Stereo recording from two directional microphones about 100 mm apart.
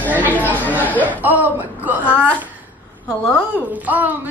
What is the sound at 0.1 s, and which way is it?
Chatter, 15° right (ahead or behind).